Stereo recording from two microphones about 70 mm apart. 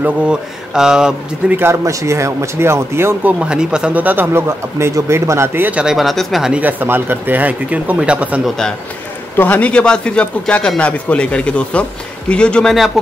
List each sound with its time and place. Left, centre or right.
0.7 s speech: centre
1.7 s speech: right
3.3 s speech: centre
3.9 s speech: right
5.9 s speech: centre
6.6 s speech: right
8.5 s speech: centre
9.4 s speech: left
13.0 s speech: centre